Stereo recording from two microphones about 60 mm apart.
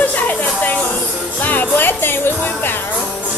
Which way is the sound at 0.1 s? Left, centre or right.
Left.